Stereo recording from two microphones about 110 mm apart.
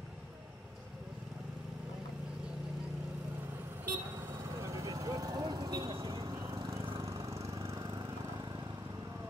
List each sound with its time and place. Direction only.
3.8 s vehicle: 25° right (ahead or behind)
7.0 s lawn mower: 25° right (ahead or behind)
7.8 s a sound: 40° right (ahead or behind)